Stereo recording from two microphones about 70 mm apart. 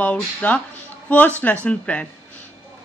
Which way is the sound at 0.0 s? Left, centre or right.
Centre.